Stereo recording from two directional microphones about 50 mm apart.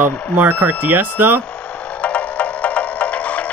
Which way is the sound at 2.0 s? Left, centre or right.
Left.